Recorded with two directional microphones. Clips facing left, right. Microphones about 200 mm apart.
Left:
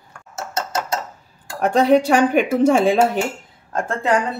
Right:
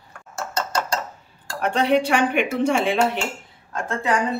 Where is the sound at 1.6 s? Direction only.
40° left (ahead or behind).